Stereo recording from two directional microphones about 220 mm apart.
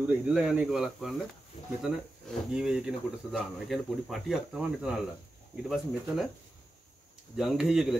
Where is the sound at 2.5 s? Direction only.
Centre (ahead or behind).